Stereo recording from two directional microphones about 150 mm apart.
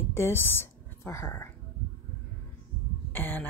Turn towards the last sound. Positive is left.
turn(degrees=15)  # may be behind; listen again after turning